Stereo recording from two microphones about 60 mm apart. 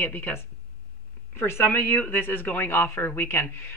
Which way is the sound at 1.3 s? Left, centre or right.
Left.